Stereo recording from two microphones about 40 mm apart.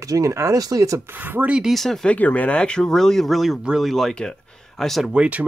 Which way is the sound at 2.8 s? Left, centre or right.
Centre.